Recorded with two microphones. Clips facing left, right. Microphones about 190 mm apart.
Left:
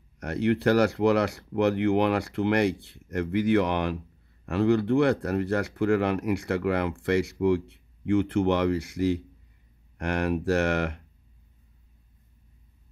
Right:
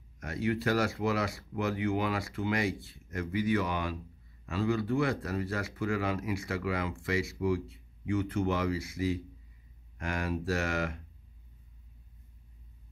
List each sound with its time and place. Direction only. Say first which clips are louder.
0.2 s speech: left 7 dB; 65° left (ahead or behind)